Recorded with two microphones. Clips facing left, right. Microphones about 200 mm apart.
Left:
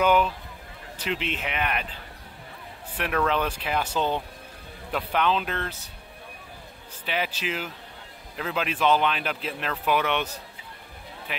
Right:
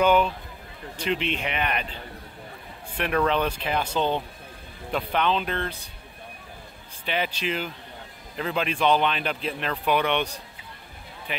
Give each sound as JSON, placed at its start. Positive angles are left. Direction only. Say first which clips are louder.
{"t": 0.0, "sound": "speech", "louder": "right 1 dB", "side_deg": 5}
{"t": 3.2, "sound": "speech", "louder": "right 2 dB", "side_deg": 5}
{"t": 7.1, "sound": "speech", "louder": "right 2 dB", "side_deg": 5}